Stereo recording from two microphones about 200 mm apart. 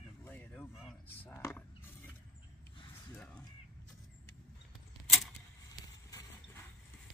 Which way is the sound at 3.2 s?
5° left (ahead or behind).